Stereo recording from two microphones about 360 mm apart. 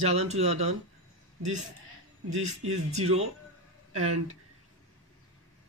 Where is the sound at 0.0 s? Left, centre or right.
Centre.